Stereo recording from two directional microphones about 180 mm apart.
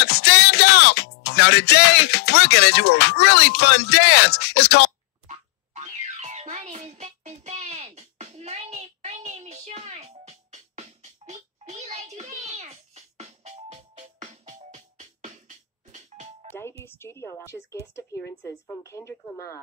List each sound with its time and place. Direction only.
0.0 s music: 65° left (ahead or behind)
5.3 s music: 40° right (ahead or behind)
16.8 s a woman's voice: 15° left (ahead or behind)